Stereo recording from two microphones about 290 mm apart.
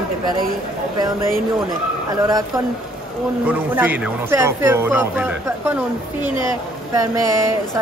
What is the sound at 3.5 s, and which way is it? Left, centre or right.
Speech, centre.